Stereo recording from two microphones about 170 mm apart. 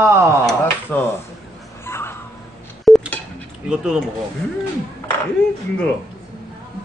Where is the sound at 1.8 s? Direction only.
15° left (ahead or behind).